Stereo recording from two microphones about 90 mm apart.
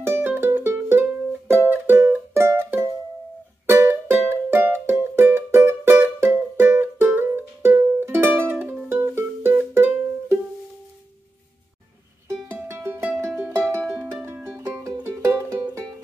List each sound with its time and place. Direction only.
0.0 s music: 25° right (ahead or behind)
12.4 s music: 25° right (ahead or behind)
14.2 s music: 25° right (ahead or behind)
14.8 s music: 35° right (ahead or behind)